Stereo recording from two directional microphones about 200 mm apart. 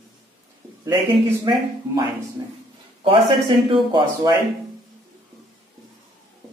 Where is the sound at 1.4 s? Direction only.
20° right (ahead or behind).